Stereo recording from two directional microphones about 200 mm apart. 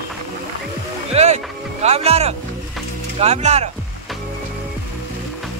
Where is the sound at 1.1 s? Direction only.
35° right (ahead or behind).